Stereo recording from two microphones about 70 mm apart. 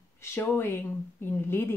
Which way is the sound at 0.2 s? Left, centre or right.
Left.